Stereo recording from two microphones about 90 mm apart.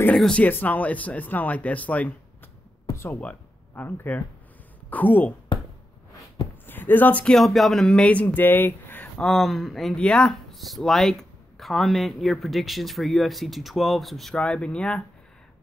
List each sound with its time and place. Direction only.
0.1 s speech: 10° left (ahead or behind)
2.9 s a sound: 30° left (ahead or behind)
3.2 s speech: 15° left (ahead or behind)
5.5 s a sound: 65° left (ahead or behind)
6.6 s speech: 20° left (ahead or behind)
7.3 s speech: centre (ahead or behind); by 9.1 s 20° left (ahead or behind)
9.2 s speech: centre (ahead or behind)